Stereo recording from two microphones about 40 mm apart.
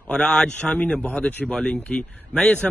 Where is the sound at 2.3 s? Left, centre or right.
Left.